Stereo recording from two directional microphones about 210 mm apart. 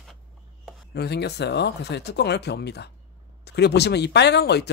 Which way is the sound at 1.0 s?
50° left (ahead or behind).